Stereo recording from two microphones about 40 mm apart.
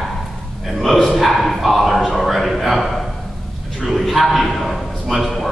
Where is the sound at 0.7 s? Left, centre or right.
Centre.